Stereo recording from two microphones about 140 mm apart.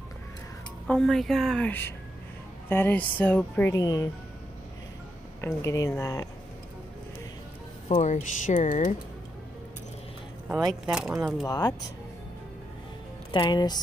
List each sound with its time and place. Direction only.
0.8 s speech: centre (ahead or behind)
1.7 s speech: 15° left (ahead or behind)
3.7 s speech: 25° left (ahead or behind)
5.4 s speech: 20° left (ahead or behind)
8.0 s speech: 60° left (ahead or behind)
10.9 s speech: 5° right (ahead or behind)
11.4 s speech: 25° left (ahead or behind)
13.3 s speech: 35° left (ahead or behind)